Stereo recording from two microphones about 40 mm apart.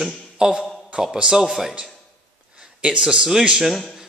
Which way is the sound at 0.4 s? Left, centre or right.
Centre.